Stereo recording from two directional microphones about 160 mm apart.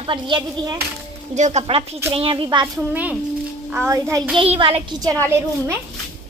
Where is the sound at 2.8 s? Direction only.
10° right (ahead or behind).